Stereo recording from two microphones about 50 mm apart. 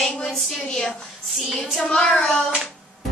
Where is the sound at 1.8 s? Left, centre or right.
Centre.